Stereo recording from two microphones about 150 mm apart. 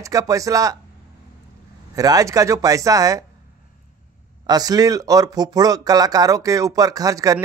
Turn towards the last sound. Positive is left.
turn(degrees=-25)  # may be behind; listen again after turning